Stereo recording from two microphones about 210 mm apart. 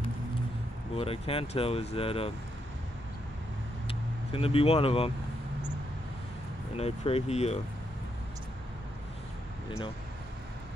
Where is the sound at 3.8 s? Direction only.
25° left (ahead or behind).